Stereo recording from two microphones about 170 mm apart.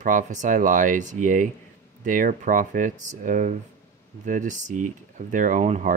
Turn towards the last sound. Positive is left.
turn(degrees=-45)  # may be behind; listen again after turning